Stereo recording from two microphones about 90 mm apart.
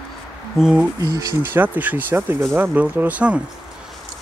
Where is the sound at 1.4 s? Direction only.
20° right (ahead or behind).